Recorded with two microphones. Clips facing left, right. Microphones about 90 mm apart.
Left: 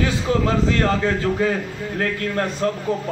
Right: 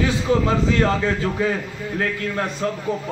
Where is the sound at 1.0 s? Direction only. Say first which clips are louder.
Left 1 dB; 15° right (ahead or behind).